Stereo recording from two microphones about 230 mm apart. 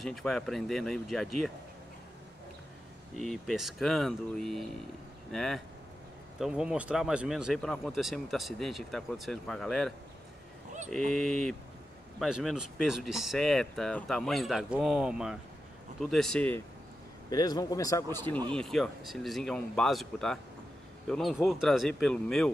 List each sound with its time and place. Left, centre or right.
0.0 s speech: centre
3.2 s speech: centre
17.3 s a man's voice: centre